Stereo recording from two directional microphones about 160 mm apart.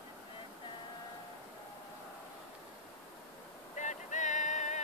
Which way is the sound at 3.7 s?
50° left (ahead or behind).